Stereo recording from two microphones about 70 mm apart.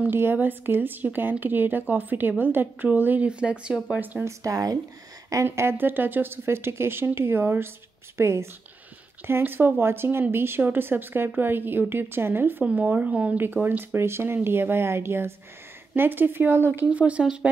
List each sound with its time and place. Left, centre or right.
0.1 s a woman's voice: right; by 3.8 s centre
4.2 s speech: right
5.3 s speech: right
16.9 s speech: centre